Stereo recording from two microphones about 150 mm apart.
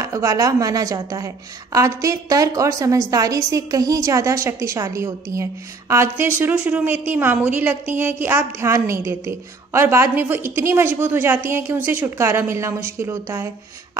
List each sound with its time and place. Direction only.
0.0 s a woman's voice: 20° right (ahead or behind)